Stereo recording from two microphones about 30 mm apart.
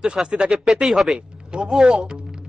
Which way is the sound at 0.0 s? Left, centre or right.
Right.